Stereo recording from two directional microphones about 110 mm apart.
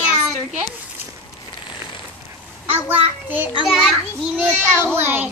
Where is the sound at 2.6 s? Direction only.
15° right (ahead or behind).